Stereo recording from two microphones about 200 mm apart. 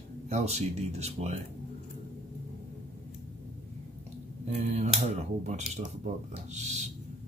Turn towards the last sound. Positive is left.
turn(degrees=-35)  # may be behind; listen again after turning